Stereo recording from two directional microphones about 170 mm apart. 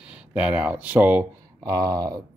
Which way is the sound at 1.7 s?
20° right (ahead or behind).